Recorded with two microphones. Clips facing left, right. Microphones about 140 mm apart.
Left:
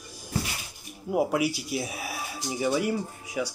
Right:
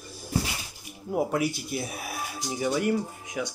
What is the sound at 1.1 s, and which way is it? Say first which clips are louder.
Speech: left 1 dB; 10° left (ahead or behind).